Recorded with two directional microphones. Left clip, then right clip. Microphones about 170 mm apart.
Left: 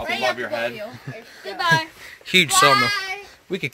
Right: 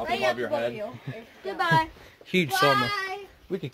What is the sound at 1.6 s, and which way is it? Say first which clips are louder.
Speech: left 4 dB; 65° right (ahead or behind).